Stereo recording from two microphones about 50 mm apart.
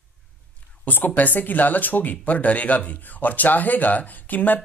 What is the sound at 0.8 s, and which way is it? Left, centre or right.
Speech, left.